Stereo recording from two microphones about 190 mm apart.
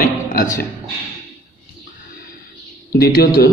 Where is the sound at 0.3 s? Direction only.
45° left (ahead or behind).